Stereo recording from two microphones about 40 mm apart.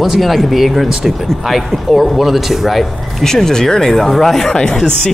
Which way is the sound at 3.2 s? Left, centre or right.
Centre.